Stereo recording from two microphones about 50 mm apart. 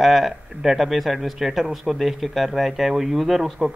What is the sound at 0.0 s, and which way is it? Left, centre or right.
A man's voice, centre.